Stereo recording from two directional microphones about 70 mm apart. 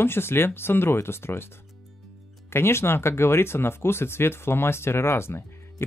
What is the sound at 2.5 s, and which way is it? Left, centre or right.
Speech, left.